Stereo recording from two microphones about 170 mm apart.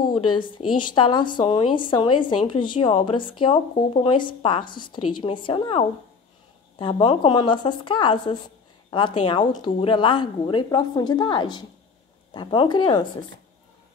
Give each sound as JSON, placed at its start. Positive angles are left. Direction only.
{"t": 0.0, "sound": "a woman's voice", "side_deg": 25}